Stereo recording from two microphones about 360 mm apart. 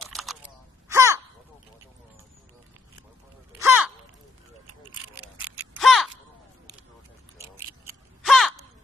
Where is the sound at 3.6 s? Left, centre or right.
Centre.